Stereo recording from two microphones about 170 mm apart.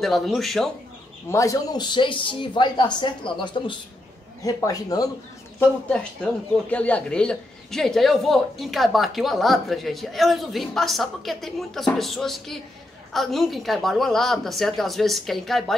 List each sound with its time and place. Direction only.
0.0 s speech: centre (ahead or behind)
1.3 s speech: 20° left (ahead or behind)
5.6 s speech: 5° left (ahead or behind)